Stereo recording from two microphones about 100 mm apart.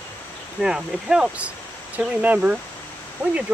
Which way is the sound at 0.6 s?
5° right (ahead or behind).